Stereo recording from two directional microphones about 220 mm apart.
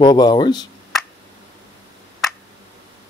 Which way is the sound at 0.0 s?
20° left (ahead or behind).